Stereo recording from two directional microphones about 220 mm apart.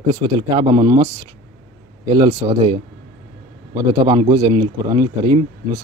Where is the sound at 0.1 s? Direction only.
20° right (ahead or behind).